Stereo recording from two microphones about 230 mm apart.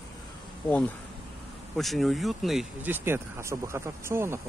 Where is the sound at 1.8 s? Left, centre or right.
Centre.